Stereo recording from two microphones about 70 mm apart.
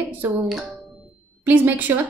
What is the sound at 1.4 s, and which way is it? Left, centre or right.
Speech, right.